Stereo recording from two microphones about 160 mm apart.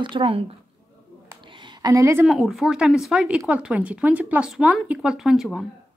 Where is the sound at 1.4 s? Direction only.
30° right (ahead or behind).